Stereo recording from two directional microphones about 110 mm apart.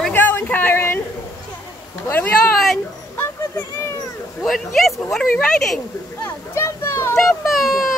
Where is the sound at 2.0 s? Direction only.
20° left (ahead or behind).